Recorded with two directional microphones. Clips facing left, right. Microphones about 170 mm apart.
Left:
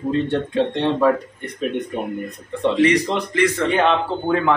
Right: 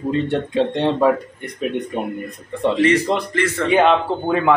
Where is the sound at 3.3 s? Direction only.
15° left (ahead or behind).